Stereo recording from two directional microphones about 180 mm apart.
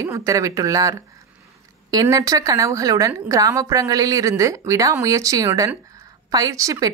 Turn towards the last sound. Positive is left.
turn(degrees=-20)  # may be behind; listen again after turning